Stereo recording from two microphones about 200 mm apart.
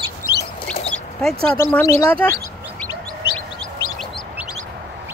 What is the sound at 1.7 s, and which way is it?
Speech, 15° left (ahead or behind).